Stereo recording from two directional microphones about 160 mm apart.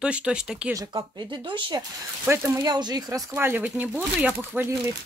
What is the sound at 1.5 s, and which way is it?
Speech, 30° right (ahead or behind).